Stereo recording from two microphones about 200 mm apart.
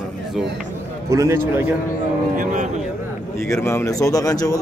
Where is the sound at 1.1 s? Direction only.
15° right (ahead or behind).